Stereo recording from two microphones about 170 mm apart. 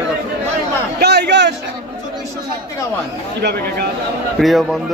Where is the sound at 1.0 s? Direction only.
75° right (ahead or behind).